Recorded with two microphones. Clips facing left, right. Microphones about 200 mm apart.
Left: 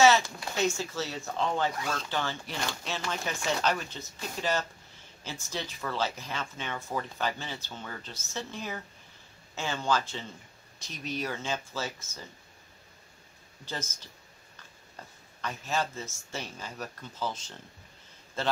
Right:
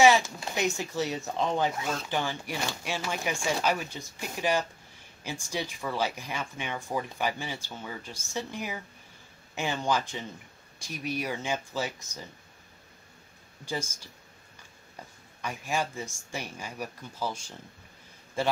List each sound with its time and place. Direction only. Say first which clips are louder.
0.6 s speech: right 1 dB; 15° right (ahead or behind)
13.7 s speech: right 4 dB; 10° right (ahead or behind)
15.4 s speech: right 1 dB; 10° right (ahead or behind)